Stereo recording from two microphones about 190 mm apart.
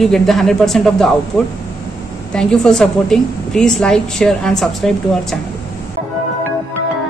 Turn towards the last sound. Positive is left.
turn(degrees=0)  # may be behind; listen again after turning